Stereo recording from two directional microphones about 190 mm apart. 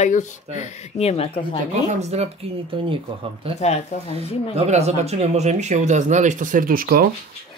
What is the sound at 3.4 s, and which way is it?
Speech, 30° right (ahead or behind).